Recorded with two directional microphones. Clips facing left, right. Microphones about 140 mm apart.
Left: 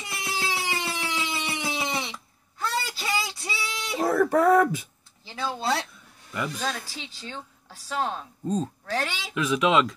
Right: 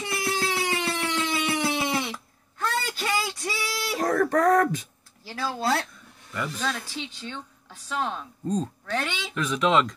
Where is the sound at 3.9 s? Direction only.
5° left (ahead or behind).